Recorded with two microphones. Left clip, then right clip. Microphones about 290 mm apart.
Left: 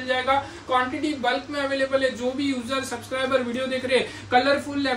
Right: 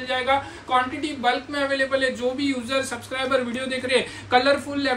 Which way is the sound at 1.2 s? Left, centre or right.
Centre.